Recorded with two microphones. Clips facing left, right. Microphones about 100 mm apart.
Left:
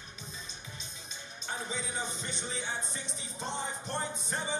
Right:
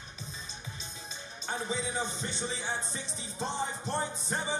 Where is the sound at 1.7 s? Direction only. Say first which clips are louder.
Right 5 dB; 35° right (ahead or behind).